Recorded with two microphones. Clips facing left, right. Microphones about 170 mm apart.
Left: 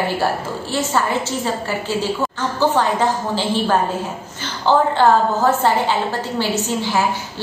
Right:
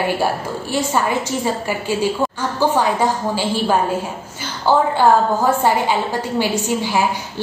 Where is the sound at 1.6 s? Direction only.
15° right (ahead or behind).